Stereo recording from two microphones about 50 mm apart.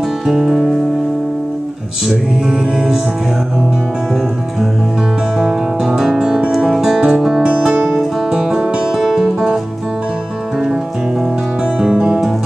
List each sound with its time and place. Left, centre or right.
0.3 s music: centre
2.0 s music: centre
5.4 s music: centre
7.4 s music: right
8.3 s music: centre
11.8 s music: centre